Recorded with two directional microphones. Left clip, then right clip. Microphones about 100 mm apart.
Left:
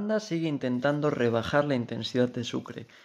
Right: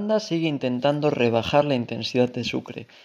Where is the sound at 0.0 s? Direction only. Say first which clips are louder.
Right 6 dB; 35° right (ahead or behind).